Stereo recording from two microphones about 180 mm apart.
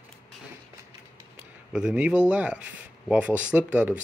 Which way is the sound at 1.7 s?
5° right (ahead or behind).